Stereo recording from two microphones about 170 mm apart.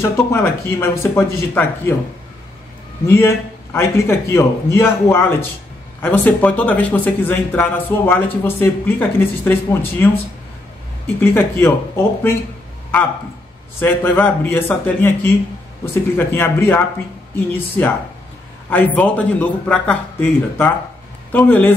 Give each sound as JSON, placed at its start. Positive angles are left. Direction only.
{"t": 0.0, "sound": "speech", "side_deg": 15}
{"t": 3.1, "sound": "speech", "side_deg": 15}
{"t": 11.1, "sound": "speech", "side_deg": 10}
{"t": 13.7, "sound": "speech", "side_deg": 10}